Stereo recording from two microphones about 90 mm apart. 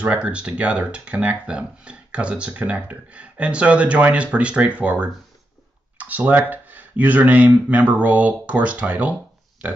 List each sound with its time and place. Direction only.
0.0 s speech: 15° right (ahead or behind)